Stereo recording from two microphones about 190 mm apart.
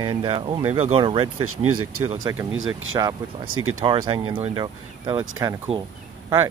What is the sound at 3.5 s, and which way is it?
Speech, 90° right.